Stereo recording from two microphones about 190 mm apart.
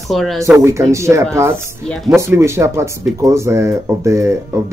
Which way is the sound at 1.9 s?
Centre (ahead or behind).